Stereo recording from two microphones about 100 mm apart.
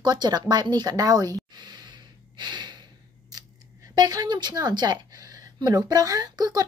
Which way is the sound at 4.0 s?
40° right (ahead or behind).